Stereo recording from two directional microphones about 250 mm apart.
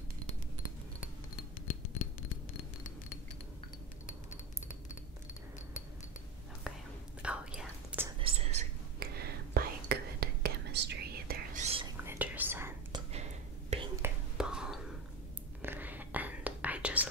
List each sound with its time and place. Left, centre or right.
7.2 s whispering: centre
8.2 s whispering: right
9.0 s whispering: right
12.0 s whispering: centre
13.1 s a sound: right
14.0 s whispering: centre